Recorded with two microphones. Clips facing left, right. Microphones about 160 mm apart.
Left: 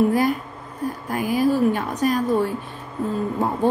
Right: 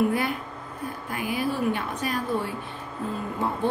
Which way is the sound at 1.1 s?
40° left (ahead or behind).